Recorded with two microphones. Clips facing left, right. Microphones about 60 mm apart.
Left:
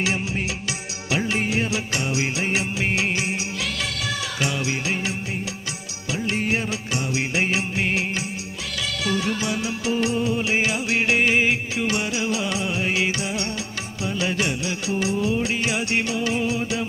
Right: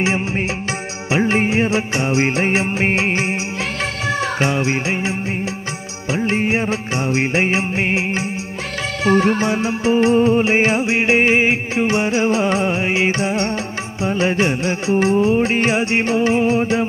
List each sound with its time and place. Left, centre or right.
0.0 s music: right
4.4 s music: right
6.1 s music: right